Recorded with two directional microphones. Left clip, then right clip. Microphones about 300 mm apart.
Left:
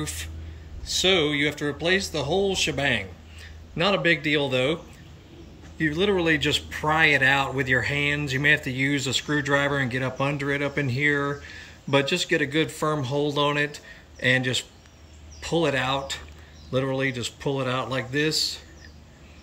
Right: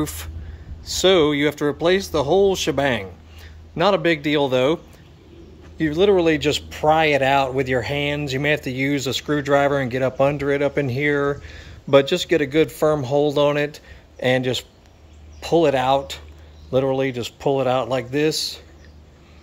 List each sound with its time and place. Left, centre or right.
0.0 s speech: centre
5.8 s speech: centre